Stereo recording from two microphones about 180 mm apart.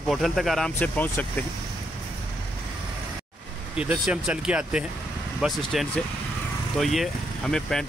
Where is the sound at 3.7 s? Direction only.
5° right (ahead or behind).